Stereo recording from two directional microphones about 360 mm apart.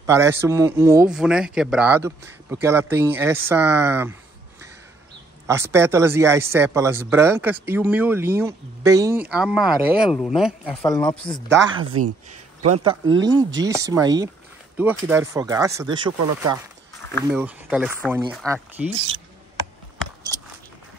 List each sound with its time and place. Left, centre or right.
0.0 s speech: centre
11.4 s speech: right
12.7 s speech: centre
17.3 s speech: centre